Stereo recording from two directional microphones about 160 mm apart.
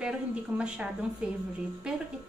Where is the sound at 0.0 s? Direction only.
5° right (ahead or behind).